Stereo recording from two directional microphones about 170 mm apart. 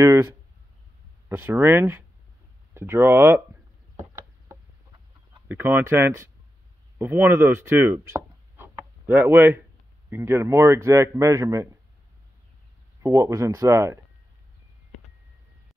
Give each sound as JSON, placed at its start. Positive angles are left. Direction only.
{"t": 0.0, "sound": "speech", "side_deg": -15}
{"t": 1.3, "sound": "a man's voice", "side_deg": -10}
{"t": 5.5, "sound": "a man's voice", "side_deg": -10}
{"t": 13.0, "sound": "a man's voice", "side_deg": -20}